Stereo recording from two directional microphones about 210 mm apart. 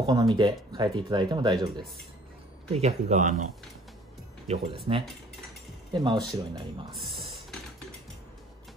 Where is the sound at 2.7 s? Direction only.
30° right (ahead or behind).